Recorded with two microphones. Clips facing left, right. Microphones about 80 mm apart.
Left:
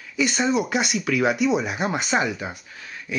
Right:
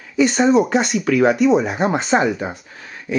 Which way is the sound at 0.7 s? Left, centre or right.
Centre.